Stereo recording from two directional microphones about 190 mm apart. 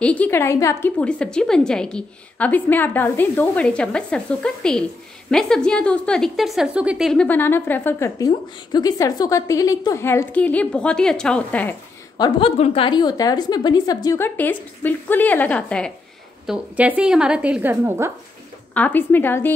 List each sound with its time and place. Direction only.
0.0 s a woman's voice: 5° left (ahead or behind)
12.2 s a woman's voice: 30° left (ahead or behind); by 15.9 s 5° left (ahead or behind)
16.4 s a woman's voice: 10° right (ahead or behind)
18.7 s a woman's voice: 10° left (ahead or behind)